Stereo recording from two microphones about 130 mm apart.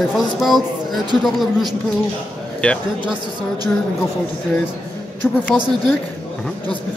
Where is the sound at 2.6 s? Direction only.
10° left (ahead or behind).